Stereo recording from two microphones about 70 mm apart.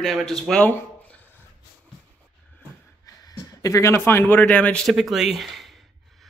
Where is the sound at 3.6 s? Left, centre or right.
Left.